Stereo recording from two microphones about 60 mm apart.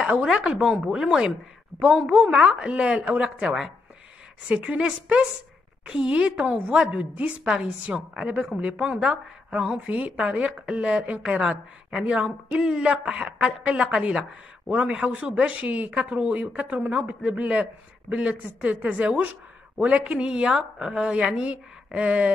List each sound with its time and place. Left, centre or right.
0.0 s a woman's voice: centre